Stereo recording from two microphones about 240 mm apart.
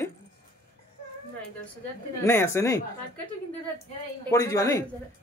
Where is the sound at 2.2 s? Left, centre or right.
Centre.